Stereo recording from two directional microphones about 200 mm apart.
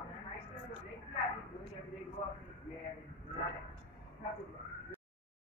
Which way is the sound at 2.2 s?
35° left (ahead or behind).